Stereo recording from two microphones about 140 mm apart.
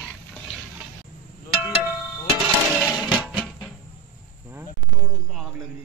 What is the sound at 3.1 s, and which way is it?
Music, 5° right (ahead or behind).